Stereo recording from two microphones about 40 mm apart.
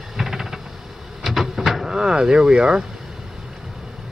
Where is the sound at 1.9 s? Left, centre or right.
Centre.